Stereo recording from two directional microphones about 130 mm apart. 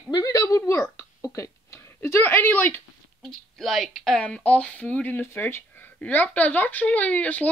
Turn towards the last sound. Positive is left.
turn(degrees=10)  # may be behind; listen again after turning